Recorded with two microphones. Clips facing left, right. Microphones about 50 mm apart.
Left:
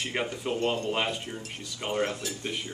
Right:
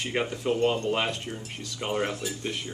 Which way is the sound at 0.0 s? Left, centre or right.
Centre.